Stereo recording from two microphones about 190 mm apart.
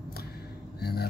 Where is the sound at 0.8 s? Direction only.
55° left (ahead or behind).